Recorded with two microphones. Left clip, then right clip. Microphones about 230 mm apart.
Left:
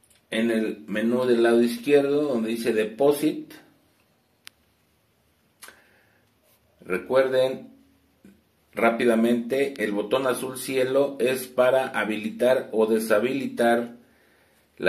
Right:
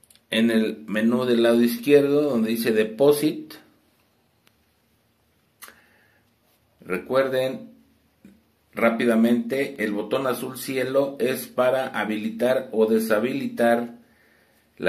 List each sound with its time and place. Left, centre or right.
0.3 s speech: centre
7.2 s speech: centre
8.7 s speech: centre